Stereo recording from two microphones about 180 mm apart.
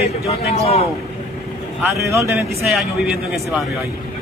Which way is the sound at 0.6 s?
35° left (ahead or behind).